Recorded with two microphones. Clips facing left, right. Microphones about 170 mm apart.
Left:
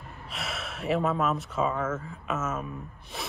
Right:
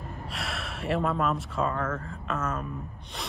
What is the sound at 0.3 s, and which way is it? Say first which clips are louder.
Speech: left 1 dB; centre (ahead or behind).